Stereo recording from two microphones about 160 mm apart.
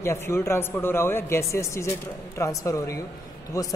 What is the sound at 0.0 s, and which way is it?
Speech, 15° left (ahead or behind).